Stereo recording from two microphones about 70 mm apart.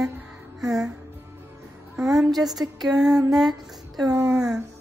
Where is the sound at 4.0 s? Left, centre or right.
Right.